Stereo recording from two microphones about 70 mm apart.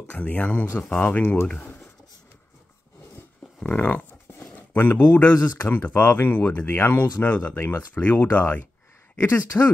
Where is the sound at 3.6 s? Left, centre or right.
Left.